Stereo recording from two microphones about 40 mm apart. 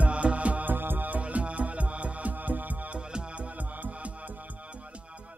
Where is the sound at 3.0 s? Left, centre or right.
Right.